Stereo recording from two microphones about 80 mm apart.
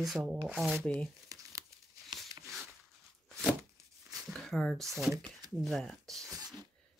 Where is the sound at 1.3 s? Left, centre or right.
Right.